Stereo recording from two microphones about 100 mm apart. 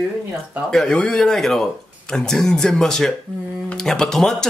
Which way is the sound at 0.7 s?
5° left (ahead or behind).